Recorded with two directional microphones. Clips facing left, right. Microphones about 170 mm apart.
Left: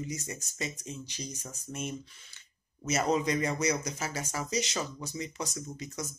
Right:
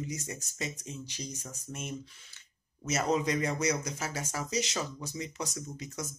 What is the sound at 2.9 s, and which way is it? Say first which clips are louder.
Speech: left 1 dB; 5° left (ahead or behind).